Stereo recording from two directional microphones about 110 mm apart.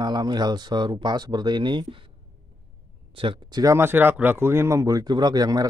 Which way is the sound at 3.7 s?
20° right (ahead or behind).